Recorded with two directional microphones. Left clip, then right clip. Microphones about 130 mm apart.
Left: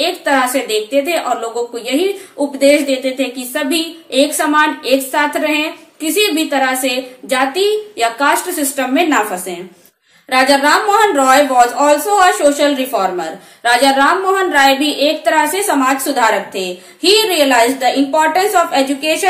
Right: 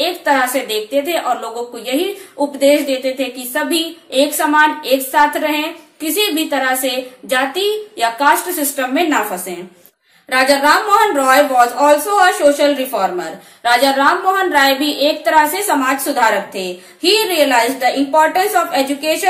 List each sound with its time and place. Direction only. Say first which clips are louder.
0.0 s a woman's voice: left 1 dB; 25° left (ahead or behind)